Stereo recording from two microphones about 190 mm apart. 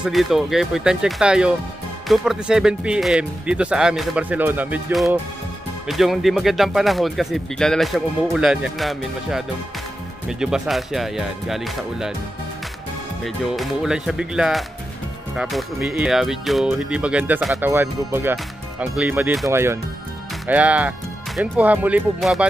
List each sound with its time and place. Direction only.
0.0 s speech: centre (ahead or behind)
13.2 s speech: centre (ahead or behind)